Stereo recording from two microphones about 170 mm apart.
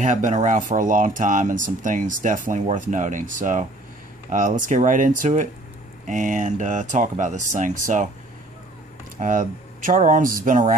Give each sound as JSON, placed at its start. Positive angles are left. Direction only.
{"t": 0.0, "sound": "speech", "side_deg": -45}
{"t": 9.2, "sound": "speech", "side_deg": -50}